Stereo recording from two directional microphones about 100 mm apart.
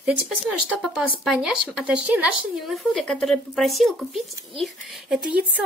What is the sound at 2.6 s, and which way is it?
Speech, centre (ahead or behind).